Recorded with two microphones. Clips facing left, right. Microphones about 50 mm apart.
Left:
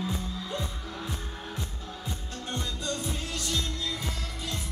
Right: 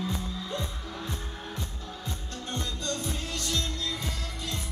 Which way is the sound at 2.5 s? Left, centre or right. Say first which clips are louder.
Even; centre.